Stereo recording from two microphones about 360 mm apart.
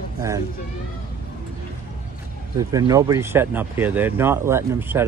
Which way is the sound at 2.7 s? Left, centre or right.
Centre.